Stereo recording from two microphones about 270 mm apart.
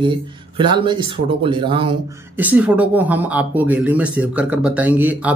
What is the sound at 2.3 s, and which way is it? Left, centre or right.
Speech, centre.